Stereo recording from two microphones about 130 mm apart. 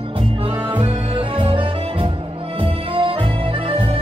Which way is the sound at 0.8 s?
40° right (ahead or behind).